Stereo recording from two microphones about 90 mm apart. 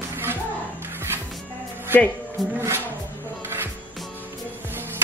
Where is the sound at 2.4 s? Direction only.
Centre (ahead or behind).